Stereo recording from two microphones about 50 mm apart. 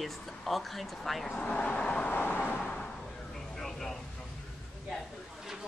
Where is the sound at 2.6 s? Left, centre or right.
Centre.